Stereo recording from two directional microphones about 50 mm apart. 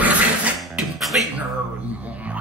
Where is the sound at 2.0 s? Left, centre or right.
Right.